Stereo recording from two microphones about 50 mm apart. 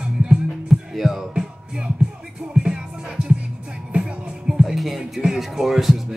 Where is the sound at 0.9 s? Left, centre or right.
Centre.